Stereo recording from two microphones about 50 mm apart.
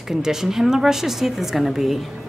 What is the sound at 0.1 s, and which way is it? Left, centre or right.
A woman's voice, centre.